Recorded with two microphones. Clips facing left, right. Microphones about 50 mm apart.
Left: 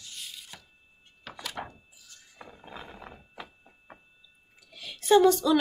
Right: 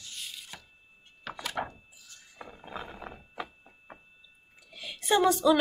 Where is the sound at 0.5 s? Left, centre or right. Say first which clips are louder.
Right 2 dB; right.